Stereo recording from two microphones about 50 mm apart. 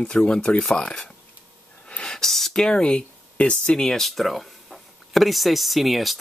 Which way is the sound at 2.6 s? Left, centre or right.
Centre.